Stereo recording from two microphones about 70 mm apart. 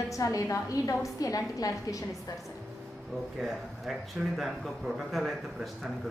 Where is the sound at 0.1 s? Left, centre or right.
Left.